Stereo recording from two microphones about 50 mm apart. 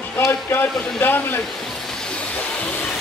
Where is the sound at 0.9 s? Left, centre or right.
Left.